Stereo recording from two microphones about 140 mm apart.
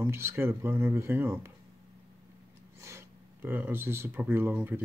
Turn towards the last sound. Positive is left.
turn(degrees=-15)  # may be behind; listen again after turning